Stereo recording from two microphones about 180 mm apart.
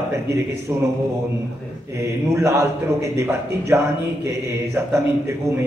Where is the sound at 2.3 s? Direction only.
15° right (ahead or behind).